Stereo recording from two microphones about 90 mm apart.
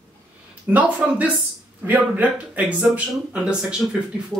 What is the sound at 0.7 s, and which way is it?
Speech, 15° right (ahead or behind).